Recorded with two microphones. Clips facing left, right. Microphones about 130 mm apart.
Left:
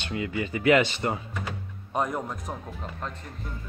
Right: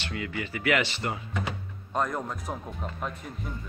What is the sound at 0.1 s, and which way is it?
Speech, 25° left (ahead or behind).